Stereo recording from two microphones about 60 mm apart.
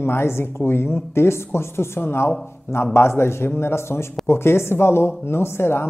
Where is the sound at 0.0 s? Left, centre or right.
Left.